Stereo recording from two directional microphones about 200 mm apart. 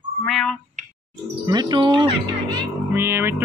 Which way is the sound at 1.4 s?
20° right (ahead or behind).